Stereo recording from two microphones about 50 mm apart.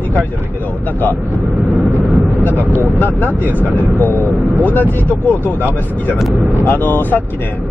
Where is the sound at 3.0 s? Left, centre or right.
Left.